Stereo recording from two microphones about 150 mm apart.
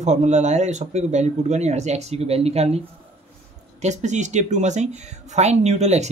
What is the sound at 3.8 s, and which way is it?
Speech, 50° right (ahead or behind).